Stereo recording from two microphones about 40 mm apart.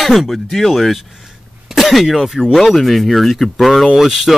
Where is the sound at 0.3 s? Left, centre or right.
Centre.